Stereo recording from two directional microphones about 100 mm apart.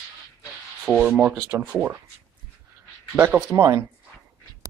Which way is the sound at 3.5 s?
45° right (ahead or behind).